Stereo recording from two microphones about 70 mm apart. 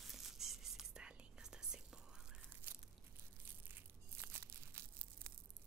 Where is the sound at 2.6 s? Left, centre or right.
Right.